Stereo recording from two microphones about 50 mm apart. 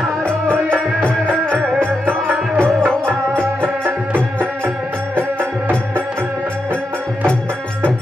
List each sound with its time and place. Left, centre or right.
0.2 s music: left
2.8 s music: right